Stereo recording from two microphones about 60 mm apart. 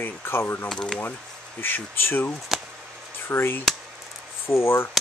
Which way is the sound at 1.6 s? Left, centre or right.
Left.